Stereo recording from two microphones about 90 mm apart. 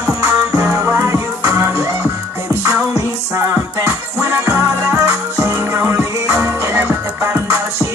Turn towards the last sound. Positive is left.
turn(degrees=-25)  # may be behind; listen again after turning